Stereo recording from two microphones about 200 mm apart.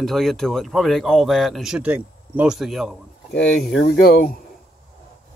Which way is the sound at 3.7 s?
50° left (ahead or behind).